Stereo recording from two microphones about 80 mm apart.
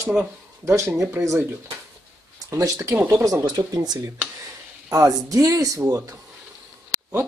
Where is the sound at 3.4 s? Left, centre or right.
Right.